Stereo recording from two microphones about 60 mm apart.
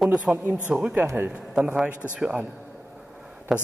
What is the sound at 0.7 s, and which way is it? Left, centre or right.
Speech, centre.